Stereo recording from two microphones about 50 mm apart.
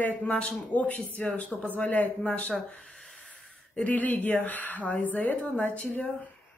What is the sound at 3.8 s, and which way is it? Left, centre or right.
Speech, left.